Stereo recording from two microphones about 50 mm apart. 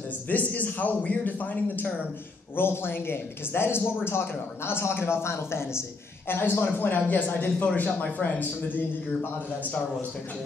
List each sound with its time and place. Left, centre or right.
0.3 s a man's voice: left
2.5 s a man's voice: left
6.6 s a man's voice: left